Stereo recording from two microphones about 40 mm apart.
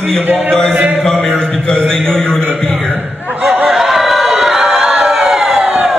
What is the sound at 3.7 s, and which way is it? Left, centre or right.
Crowd, centre.